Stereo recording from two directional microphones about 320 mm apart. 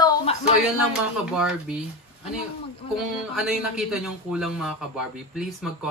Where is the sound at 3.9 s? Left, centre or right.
Centre.